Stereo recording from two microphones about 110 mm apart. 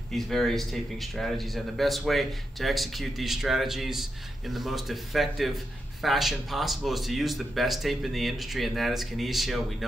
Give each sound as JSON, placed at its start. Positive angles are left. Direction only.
{"t": 0.1, "sound": "speech", "side_deg": 5}